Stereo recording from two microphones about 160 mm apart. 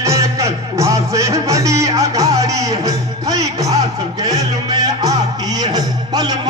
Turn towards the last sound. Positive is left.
turn(degrees=-25)  # may be behind; listen again after turning